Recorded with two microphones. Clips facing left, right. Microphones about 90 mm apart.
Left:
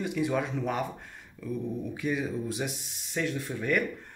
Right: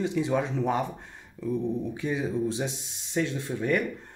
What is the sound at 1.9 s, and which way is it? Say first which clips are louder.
Speech: right 2 dB; 25° right (ahead or behind).